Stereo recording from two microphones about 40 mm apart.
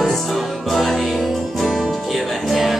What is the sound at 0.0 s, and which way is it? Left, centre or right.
Music, centre.